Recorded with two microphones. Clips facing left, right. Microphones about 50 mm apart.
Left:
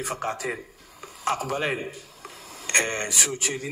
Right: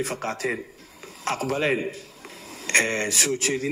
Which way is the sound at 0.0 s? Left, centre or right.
Centre.